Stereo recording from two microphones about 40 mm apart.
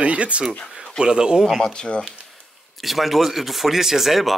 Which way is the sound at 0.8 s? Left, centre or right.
Right.